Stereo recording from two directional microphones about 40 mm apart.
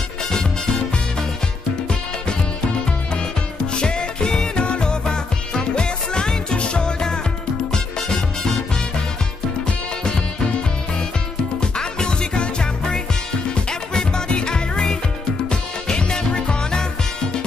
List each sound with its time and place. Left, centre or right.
0.3 s music: centre
3.7 s music: left
9.7 s music: left
11.6 s music: centre
14.3 s music: left